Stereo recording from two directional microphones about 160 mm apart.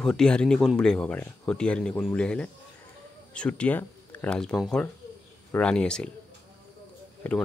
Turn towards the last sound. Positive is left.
turn(degrees=10)  # may be behind; listen again after turning